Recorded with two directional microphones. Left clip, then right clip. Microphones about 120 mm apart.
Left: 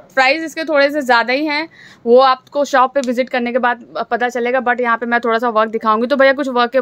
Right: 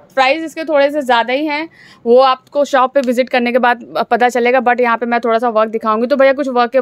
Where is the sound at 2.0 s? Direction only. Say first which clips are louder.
Right 1 dB; 15° right (ahead or behind).